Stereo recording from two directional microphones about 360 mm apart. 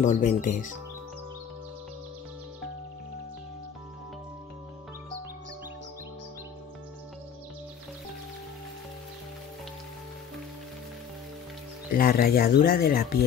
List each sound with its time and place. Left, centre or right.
0.0 s speech: centre
11.9 s speech: left